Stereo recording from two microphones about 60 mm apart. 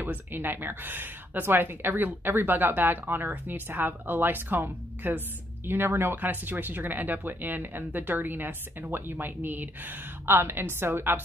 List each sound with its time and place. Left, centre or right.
0.0 s speech: right